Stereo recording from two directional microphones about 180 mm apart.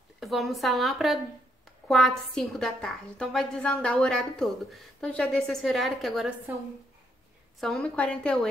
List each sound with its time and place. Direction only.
0.2 s a woman's voice: centre (ahead or behind)
7.6 s a woman's voice: 5° left (ahead or behind)